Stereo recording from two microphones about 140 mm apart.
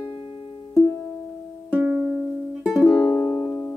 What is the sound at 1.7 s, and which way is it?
Music, 10° right (ahead or behind).